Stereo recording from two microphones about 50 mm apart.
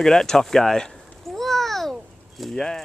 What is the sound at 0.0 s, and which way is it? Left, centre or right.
Speech, centre.